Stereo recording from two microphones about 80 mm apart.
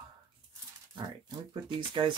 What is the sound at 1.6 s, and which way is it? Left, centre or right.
Speech, right.